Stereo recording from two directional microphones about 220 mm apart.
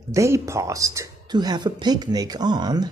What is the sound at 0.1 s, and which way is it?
Speech, 15° right (ahead or behind).